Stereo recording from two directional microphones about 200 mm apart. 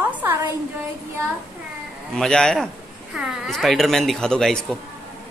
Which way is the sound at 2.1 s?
5° left (ahead or behind).